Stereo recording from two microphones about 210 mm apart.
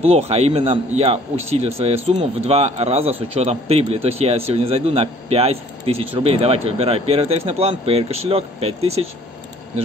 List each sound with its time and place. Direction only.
0.0 s speech: 30° right (ahead or behind)